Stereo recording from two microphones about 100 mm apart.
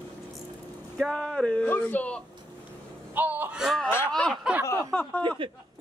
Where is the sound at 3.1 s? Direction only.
20° right (ahead or behind).